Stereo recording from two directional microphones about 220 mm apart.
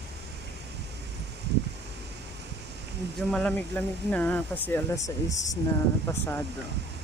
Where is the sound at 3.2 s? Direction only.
5° left (ahead or behind).